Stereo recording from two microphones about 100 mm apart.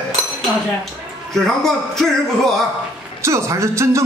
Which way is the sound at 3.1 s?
30° right (ahead or behind).